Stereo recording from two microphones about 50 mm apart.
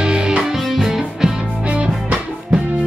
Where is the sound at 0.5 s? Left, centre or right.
Centre.